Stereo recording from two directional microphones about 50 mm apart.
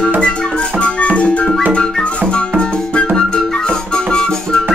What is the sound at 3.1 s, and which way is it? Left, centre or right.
Music, centre.